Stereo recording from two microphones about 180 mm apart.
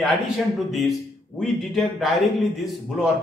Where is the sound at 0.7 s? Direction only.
Centre (ahead or behind).